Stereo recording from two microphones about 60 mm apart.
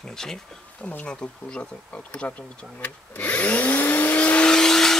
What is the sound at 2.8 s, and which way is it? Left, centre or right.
Vacuum cleaner, left.